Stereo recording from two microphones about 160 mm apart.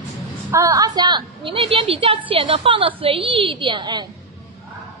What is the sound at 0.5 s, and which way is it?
A woman's voice, 20° right (ahead or behind).